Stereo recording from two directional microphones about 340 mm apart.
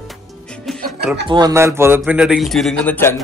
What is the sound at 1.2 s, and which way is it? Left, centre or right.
A man's voice, centre.